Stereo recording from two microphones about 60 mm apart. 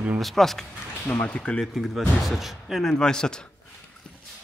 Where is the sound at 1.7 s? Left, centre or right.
Centre.